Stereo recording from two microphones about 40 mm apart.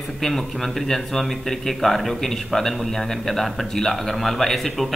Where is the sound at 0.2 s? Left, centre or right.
Centre.